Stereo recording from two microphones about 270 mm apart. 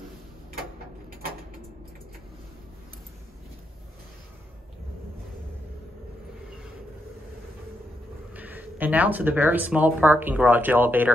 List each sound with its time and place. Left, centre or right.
8.3 s speech: centre